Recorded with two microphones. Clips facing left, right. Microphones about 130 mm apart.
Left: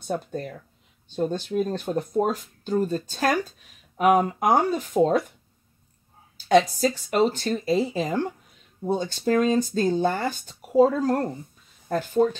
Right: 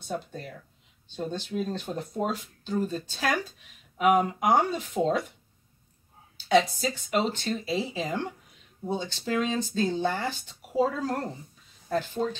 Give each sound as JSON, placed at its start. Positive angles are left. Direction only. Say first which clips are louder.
{"t": 1.1, "sound": "speech", "louder": "left 6 dB", "side_deg": 45}
{"t": 6.3, "sound": "speech", "louder": "left 4 dB", "side_deg": 45}